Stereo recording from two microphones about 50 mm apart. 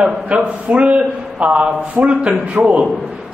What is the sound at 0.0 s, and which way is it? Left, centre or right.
A man's voice, right.